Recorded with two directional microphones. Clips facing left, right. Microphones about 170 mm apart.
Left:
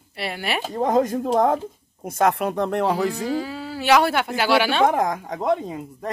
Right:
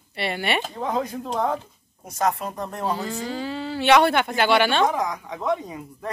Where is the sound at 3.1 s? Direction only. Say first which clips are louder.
Left 3 dB; 5° left (ahead or behind).